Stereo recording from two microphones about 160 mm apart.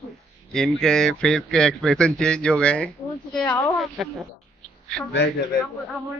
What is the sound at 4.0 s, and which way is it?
Speech, centre (ahead or behind).